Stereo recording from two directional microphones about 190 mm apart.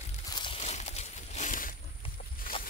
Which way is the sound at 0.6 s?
35° left (ahead or behind).